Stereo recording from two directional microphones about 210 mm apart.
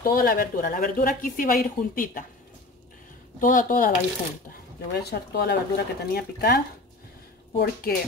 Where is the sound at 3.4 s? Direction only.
40° left (ahead or behind).